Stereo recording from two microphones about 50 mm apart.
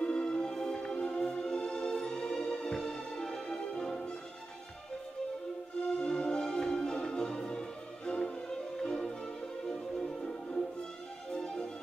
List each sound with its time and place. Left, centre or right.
0.0 s music: centre
5.9 s music: centre